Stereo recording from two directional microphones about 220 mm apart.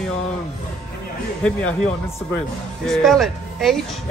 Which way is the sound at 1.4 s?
5° left (ahead or behind).